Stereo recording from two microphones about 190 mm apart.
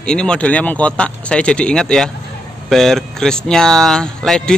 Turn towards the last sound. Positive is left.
turn(degrees=5)  # may be behind; listen again after turning